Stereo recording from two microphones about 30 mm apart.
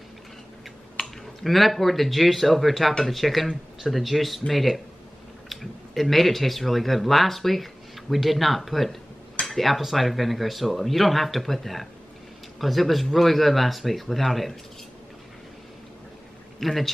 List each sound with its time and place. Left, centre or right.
1.0 s a sound: left
1.4 s speech: centre
16.5 s speech: centre